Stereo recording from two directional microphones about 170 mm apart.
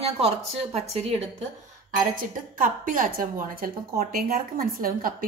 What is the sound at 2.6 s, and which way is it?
A woman's voice, 55° right (ahead or behind).